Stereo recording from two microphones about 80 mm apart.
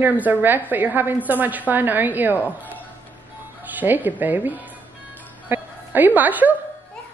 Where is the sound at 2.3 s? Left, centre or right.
Left.